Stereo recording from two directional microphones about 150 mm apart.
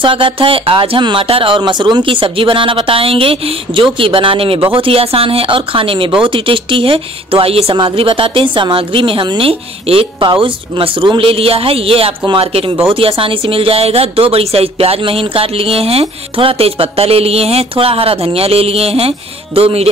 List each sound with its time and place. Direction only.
0.0 s speech: 35° right (ahead or behind)